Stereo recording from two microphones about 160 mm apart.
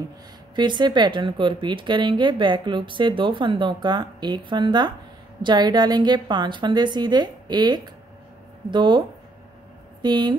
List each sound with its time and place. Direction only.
0.6 s a woman's voice: 30° right (ahead or behind)
10.0 s a woman's voice: 30° right (ahead or behind)